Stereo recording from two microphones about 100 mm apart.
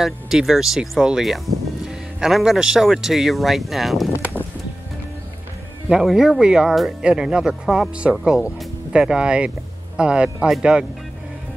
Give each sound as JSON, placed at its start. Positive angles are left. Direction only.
{"t": 0.0, "sound": "speech", "side_deg": -5}
{"t": 4.1, "sound": "a sound", "side_deg": 25}
{"t": 5.9, "sound": "speech", "side_deg": -5}